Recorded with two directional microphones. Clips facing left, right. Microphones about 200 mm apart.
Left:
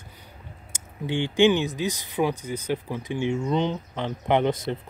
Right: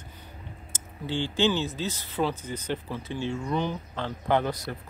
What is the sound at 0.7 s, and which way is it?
Speech, 15° left (ahead or behind).